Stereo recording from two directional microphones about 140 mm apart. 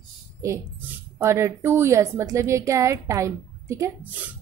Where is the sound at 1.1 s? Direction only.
20° right (ahead or behind).